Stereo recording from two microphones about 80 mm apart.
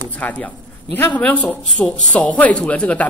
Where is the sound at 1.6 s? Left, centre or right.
Centre.